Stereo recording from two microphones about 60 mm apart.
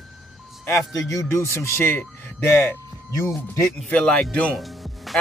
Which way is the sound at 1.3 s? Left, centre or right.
Left.